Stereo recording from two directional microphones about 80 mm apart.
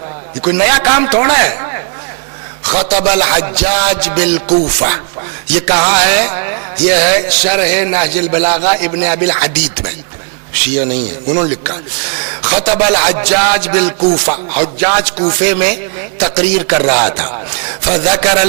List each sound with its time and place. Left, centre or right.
0.4 s a man's voice: centre